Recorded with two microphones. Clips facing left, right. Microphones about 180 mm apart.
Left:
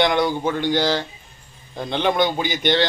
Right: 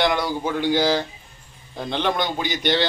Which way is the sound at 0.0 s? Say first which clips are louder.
Left 3 dB; centre (ahead or behind).